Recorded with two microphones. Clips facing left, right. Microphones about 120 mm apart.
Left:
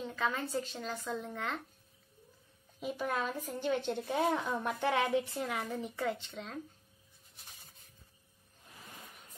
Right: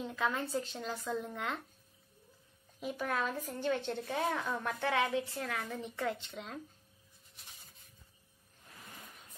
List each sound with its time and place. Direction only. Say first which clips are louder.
0.0 s speech: even; 5° right (ahead or behind)
2.8 s a woman's voice: even; 5° left (ahead or behind); by 5.5 s 25° left (ahead or behind)
5.5 s speech: left 2 dB; 10° left (ahead or behind)